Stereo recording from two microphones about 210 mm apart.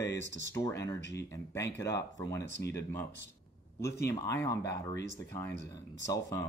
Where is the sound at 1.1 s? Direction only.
15° left (ahead or behind).